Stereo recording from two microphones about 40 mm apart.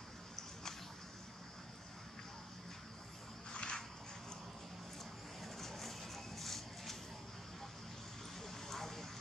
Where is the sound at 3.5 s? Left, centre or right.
Left.